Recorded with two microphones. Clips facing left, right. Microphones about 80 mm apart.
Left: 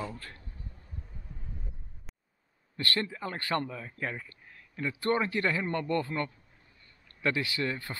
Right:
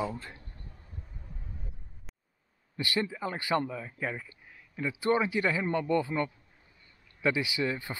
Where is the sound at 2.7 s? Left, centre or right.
Centre.